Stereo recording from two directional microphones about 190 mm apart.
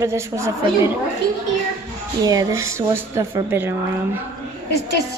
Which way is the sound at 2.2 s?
15° right (ahead or behind).